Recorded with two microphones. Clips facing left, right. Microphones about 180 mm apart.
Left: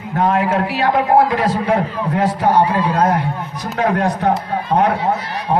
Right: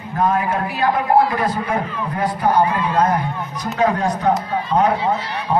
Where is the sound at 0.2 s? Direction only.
75° left (ahead or behind).